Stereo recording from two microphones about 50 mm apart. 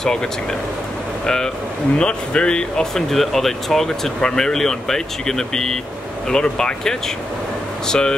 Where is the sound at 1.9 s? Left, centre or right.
Centre.